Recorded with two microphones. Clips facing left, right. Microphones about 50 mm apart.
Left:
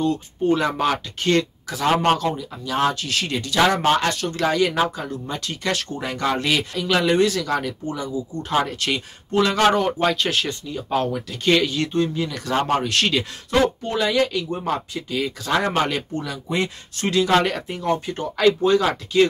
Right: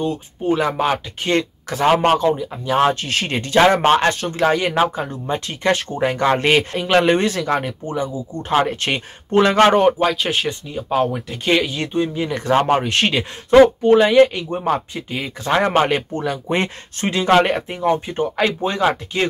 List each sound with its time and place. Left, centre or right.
0.0 s speech: centre; by 9.9 s right
9.9 s speech: centre
10.3 s speech: right
13.8 s speech: right
17.0 s speech: right